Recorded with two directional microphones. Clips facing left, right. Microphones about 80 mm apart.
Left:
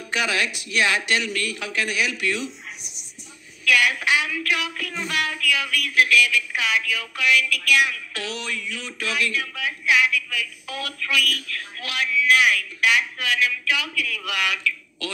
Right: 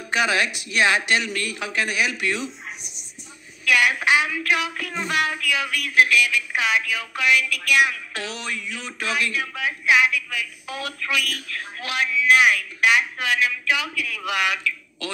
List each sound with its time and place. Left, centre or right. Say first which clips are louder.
0.1 s speech: right 3 dB; right
3.6 s speech: right 1 dB; right